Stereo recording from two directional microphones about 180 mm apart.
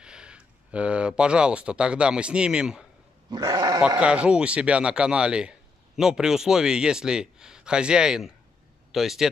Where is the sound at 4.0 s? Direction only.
5° right (ahead or behind).